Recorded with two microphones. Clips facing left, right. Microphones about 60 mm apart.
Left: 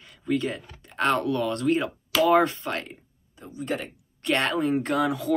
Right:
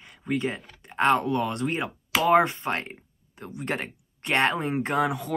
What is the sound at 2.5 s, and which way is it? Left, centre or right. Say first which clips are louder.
Speech: right 2 dB; right.